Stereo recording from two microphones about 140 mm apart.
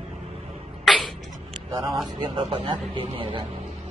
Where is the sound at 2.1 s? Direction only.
35° right (ahead or behind).